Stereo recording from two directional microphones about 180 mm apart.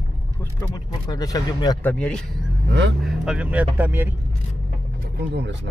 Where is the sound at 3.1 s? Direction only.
5° right (ahead or behind).